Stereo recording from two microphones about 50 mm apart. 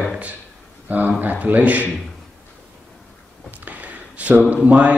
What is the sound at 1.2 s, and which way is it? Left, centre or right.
Speech, right.